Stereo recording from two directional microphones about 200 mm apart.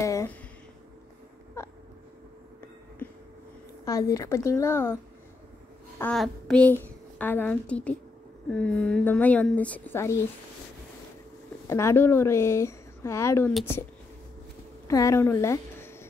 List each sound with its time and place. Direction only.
0.0 s a sound: 15° left (ahead or behind)
3.8 s a woman's voice: 15° left (ahead or behind)
5.9 s a sound: 5° left (ahead or behind)
7.2 s a woman's voice: 10° left (ahead or behind)
11.6 s a woman's voice: 15° left (ahead or behind)
14.9 s a woman's voice: 15° left (ahead or behind)